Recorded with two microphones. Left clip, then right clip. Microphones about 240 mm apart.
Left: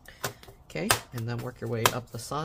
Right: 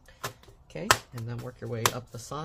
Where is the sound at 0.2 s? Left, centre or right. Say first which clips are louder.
Left 2 dB; centre.